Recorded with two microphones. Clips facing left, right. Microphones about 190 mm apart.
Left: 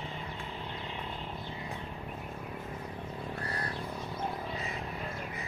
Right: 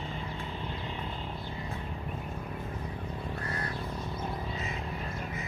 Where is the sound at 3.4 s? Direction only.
35° left (ahead or behind).